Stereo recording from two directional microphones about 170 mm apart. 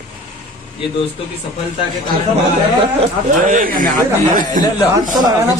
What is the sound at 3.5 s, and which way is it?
Speech, 55° right (ahead or behind).